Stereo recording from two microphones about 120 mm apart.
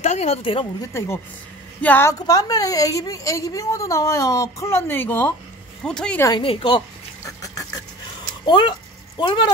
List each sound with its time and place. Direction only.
0.0 s a sound: 75° left (ahead or behind)
0.4 s a woman's voice: 45° left (ahead or behind)
0.7 s a woman's voice: 25° left (ahead or behind)
5.9 s speech: 5° left (ahead or behind)
6.4 s a woman's voice: 45° left (ahead or behind)
7.2 s a sound: 30° left (ahead or behind)
8.5 s speech: 40° left (ahead or behind)